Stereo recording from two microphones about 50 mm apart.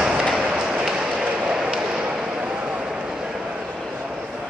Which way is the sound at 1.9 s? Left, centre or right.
Centre.